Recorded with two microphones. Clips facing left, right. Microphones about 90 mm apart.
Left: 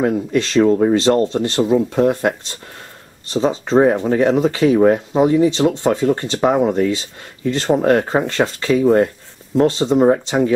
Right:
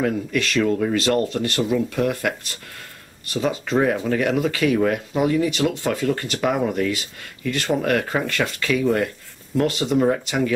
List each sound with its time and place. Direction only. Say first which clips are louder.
0.0 s speech: left 5 dB; 30° left (ahead or behind)